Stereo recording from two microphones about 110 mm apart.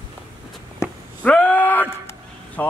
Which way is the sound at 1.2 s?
15° left (ahead or behind).